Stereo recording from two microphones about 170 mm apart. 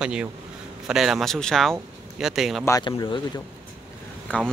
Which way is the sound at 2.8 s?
25° left (ahead or behind).